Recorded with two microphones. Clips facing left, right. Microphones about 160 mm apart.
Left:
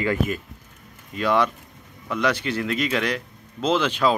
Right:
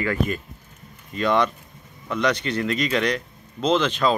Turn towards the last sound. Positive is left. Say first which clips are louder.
# even
turn(degrees=10)  # may be behind; listen again after turning